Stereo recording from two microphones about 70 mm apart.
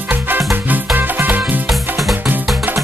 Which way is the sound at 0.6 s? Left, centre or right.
Right.